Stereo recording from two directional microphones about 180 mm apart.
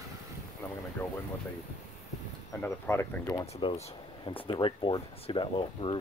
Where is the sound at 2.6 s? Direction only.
15° left (ahead or behind).